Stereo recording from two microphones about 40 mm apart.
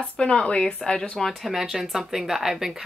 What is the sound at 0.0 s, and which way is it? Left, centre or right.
Speech, left.